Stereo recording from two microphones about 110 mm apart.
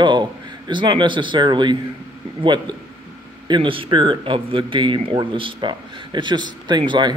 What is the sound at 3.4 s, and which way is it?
Speech, 50° right (ahead or behind).